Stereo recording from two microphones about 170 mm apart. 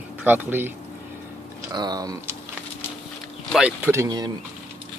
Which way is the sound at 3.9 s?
20° right (ahead or behind).